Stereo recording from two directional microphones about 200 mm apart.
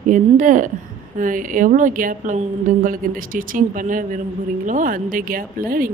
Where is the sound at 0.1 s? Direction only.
40° right (ahead or behind).